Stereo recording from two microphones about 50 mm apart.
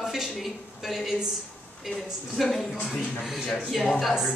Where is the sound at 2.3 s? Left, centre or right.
Centre.